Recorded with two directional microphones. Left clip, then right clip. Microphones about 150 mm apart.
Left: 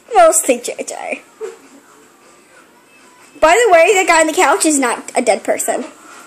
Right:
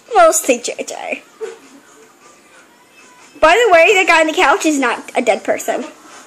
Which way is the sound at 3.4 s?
5° left (ahead or behind).